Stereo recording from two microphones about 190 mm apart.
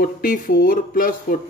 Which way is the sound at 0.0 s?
50° left (ahead or behind).